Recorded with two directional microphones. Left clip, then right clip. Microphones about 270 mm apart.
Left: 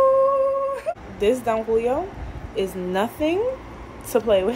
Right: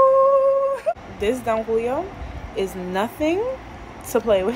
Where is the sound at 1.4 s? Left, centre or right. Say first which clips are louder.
Even; centre.